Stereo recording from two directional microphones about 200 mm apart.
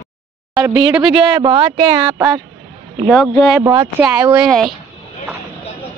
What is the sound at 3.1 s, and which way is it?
Speech, centre (ahead or behind).